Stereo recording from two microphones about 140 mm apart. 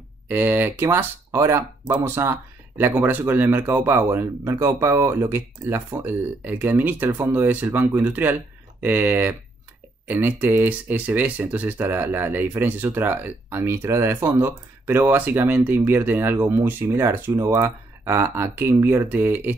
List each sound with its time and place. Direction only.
0.3 s speech: 15° right (ahead or behind)